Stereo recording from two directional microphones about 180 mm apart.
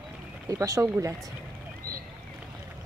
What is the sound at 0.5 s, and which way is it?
Speech, 20° right (ahead or behind).